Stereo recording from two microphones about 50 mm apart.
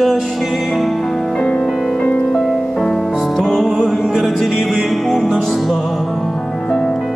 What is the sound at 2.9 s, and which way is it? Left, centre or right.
Music, centre.